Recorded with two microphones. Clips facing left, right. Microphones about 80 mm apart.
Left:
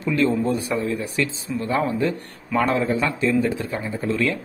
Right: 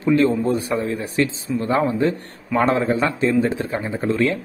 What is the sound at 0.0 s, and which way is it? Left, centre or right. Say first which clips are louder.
Speech: right 3 dB; right.